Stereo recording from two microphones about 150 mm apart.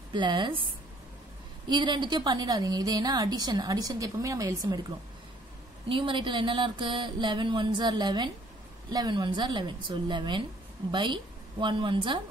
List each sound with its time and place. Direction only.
0.1 s speech: 30° right (ahead or behind)
1.7 s a woman's voice: 30° right (ahead or behind)
5.9 s speech: 35° right (ahead or behind)